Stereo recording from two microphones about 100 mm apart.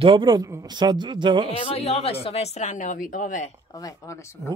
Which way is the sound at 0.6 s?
45° right (ahead or behind).